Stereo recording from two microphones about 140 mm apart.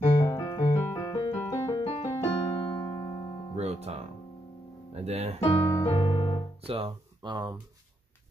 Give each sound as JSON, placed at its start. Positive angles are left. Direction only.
{"t": 0.3, "sound": "keyboard", "side_deg": 25}
{"t": 2.7, "sound": "music", "side_deg": 30}
{"t": 3.5, "sound": "music", "side_deg": -50}
{"t": 5.0, "sound": "speech", "side_deg": -50}
{"t": 5.7, "sound": "piano", "side_deg": 20}
{"t": 6.6, "sound": "speech", "side_deg": -45}
{"t": 7.2, "sound": "speech", "side_deg": -30}